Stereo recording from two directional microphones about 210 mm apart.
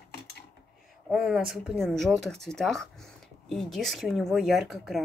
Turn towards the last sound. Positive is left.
turn(degrees=0)  # may be behind; listen again after turning